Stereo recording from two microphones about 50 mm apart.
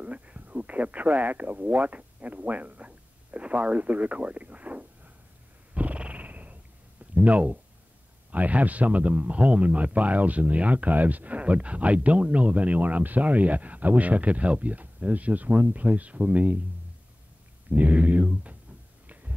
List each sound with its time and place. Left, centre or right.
0.0 s radio: right
5.8 s purr: right
8.3 s a man's voice: right
17.6 s a man's voice: right